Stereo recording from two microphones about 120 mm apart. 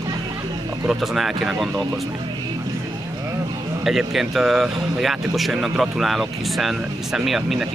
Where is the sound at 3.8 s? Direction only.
Centre (ahead or behind).